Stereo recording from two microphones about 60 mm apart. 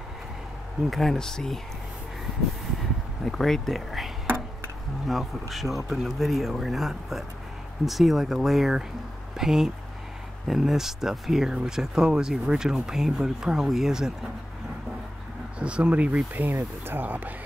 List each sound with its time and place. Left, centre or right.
0.8 s speech: centre
3.3 s speech: centre
15.6 s speech: centre
16.3 s speech: right